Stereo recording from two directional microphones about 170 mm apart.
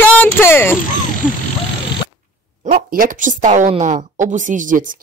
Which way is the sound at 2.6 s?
50° right (ahead or behind).